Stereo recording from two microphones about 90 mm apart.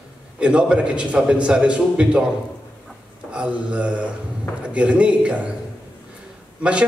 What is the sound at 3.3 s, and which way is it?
A man's voice, 10° right (ahead or behind).